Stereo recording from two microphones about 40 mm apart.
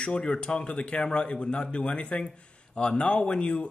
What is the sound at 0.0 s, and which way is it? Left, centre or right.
Speech, left.